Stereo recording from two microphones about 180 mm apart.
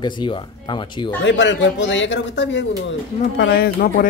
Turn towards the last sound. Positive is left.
turn(degrees=55)  # may be behind; listen again after turning